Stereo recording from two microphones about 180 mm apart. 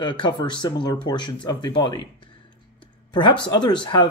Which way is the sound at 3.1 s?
25° left (ahead or behind).